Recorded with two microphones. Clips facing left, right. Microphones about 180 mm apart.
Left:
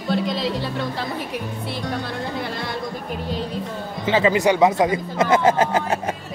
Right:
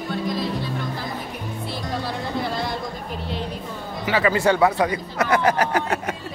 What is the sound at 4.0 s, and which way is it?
Speech, 25° left (ahead or behind).